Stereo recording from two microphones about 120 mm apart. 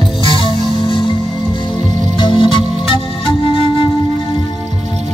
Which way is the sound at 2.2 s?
45° left (ahead or behind).